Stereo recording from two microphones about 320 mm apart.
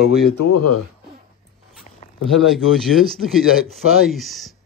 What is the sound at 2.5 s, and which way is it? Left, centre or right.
A man's voice, centre.